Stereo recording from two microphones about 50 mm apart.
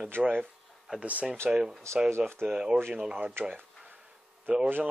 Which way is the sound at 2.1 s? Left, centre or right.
Right.